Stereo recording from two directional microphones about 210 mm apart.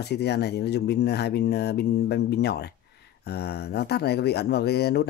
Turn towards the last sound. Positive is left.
turn(degrees=50)  # may be behind; listen again after turning